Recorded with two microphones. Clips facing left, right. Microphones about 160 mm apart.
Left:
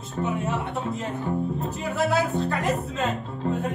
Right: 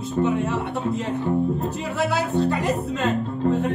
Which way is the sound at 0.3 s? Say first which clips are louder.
Right 4 dB; 70° right (ahead or behind).